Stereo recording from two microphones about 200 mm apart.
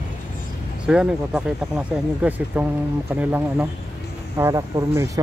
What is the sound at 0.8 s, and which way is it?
Speech, 5° right (ahead or behind).